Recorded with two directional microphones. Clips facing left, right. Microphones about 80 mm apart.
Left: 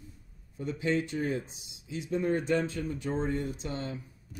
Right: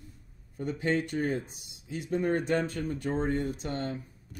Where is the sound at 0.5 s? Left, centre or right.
Right.